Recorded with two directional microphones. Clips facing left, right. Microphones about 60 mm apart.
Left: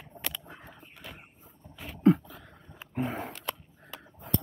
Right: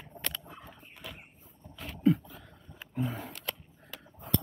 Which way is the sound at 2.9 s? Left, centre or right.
Left.